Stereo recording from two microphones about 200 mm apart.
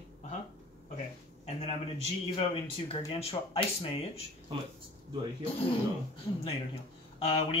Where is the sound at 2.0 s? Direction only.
30° left (ahead or behind).